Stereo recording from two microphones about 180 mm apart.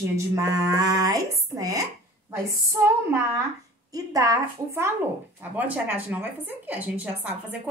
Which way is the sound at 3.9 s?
20° right (ahead or behind).